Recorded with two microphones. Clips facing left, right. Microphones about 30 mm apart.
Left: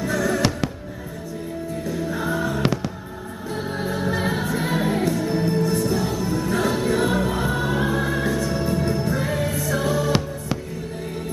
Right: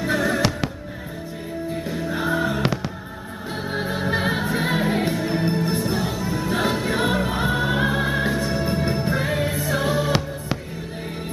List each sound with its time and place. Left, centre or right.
0.0 s fireworks: right
1.9 s music: right
2.6 s music: centre
3.5 s music: right